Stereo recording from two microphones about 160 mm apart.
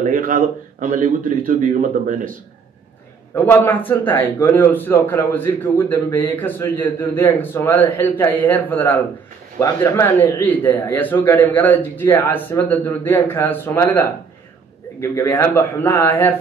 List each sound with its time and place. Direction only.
0.0 s speech: 55° right (ahead or behind)
3.3 s speech: 10° left (ahead or behind)